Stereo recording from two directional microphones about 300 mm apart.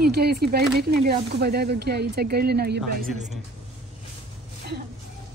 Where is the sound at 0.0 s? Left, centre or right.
Right.